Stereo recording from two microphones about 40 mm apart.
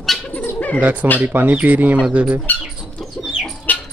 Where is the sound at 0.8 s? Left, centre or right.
Right.